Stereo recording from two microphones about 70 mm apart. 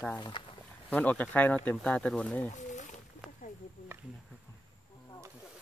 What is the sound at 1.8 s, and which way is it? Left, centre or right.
Speech, centre.